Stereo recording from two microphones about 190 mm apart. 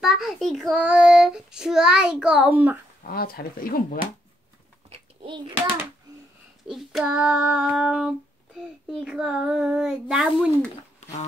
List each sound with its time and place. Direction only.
0.0 s child singing: centre (ahead or behind)
3.0 s speech: 50° left (ahead or behind)
4.8 s a sound: 30° right (ahead or behind)
6.7 s child singing: centre (ahead or behind)